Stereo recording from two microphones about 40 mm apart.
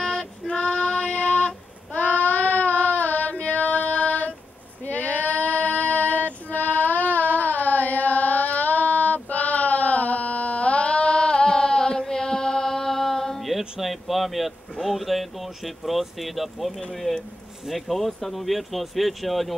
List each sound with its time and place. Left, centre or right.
0.0 s female singing: centre
0.5 s child singing: left
1.1 s child singing: left
7.3 s carnatic music: left; by 13.4 s centre
13.4 s a sound: centre
16.9 s speech: centre